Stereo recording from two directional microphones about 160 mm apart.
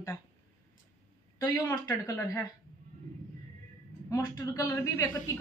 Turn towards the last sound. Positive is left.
turn(degrees=15)  # may be behind; listen again after turning